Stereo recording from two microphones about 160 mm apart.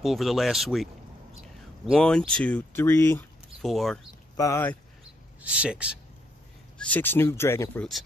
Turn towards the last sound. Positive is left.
turn(degrees=15)  # may be behind; listen again after turning